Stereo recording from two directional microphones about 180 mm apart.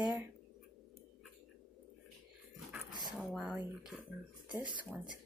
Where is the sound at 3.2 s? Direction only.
Centre (ahead or behind).